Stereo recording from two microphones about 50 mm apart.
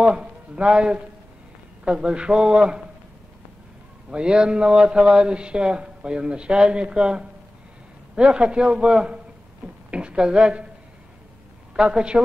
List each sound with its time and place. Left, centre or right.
0.0 s speech: right
4.1 s speech: centre
11.7 s speech: centre